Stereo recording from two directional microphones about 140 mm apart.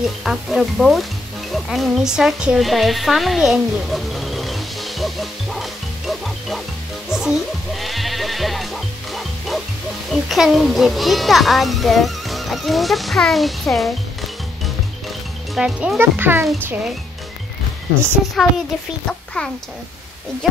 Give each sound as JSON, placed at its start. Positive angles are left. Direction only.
{"t": 0.0, "sound": "speech", "side_deg": -5}
{"t": 7.1, "sound": "music", "side_deg": -5}
{"t": 10.1, "sound": "a child's voice", "side_deg": 0}
{"t": 15.5, "sound": "speech", "side_deg": -5}
{"t": 16.0, "sound": "a child's voice", "side_deg": -15}
{"t": 18.4, "sound": "speech", "side_deg": 0}